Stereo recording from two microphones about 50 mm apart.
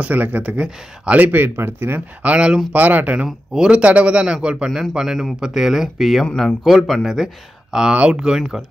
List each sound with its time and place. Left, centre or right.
0.0 s a man's voice: right
1.2 s speech: right
1.6 s speech: right
2.3 s a man's voice: centre
2.7 s speech: right
3.5 s a man's voice: centre
6.3 s speech: centre
7.7 s speech: centre